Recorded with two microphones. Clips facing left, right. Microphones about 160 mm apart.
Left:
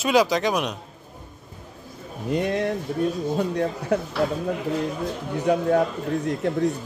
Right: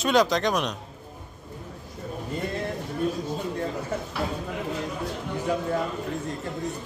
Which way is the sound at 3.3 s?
70° left (ahead or behind).